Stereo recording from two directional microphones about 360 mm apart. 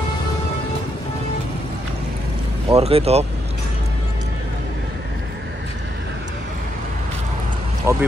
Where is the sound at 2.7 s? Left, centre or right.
Centre.